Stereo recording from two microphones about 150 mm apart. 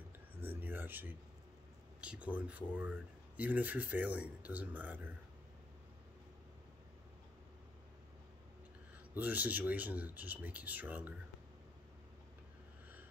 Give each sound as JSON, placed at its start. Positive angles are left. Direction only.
{"t": 0.4, "sound": "a sound", "side_deg": -10}
{"t": 2.0, "sound": "speech", "side_deg": -10}
{"t": 9.1, "sound": "speech", "side_deg": -10}